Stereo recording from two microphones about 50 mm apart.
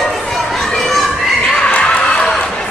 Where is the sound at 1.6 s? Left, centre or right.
Centre.